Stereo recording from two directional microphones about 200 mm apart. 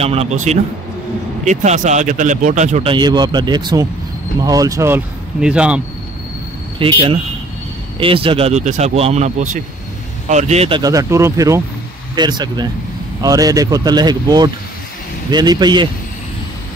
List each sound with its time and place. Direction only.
0.0 s speech: 30° right (ahead or behind); by 5.8 s 5° right (ahead or behind)
6.8 s speech: 25° right (ahead or behind)
10.8 s speech: 15° right (ahead or behind)